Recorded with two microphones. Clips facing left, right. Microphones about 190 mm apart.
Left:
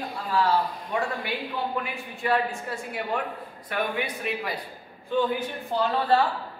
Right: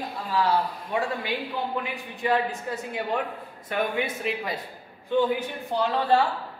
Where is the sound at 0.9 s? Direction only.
15° right (ahead or behind).